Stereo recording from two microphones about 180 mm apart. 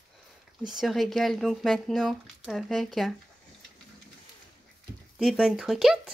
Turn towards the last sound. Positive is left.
turn(degrees=0)  # may be behind; listen again after turning